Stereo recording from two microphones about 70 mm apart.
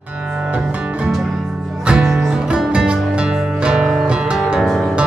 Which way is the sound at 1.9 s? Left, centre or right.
Centre.